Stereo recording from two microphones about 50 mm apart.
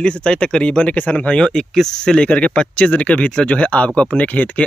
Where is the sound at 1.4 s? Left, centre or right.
Centre; by 4.6 s left.